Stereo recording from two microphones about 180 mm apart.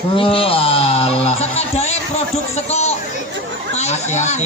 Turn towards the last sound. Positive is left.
turn(degrees=40)  # may be behind; listen again after turning